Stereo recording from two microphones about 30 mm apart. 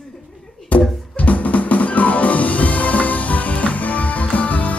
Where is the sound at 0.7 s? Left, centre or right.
Left.